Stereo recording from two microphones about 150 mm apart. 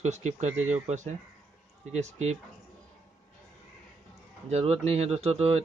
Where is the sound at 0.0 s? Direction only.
50° right (ahead or behind).